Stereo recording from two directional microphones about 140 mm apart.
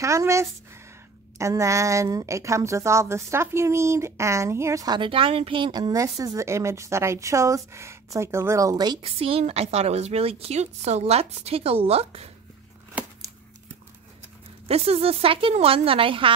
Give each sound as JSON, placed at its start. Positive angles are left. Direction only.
{"t": 0.0, "sound": "a woman's voice", "side_deg": -20}
{"t": 9.0, "sound": "a woman's voice", "side_deg": -45}
{"t": 14.7, "sound": "a woman's voice", "side_deg": -45}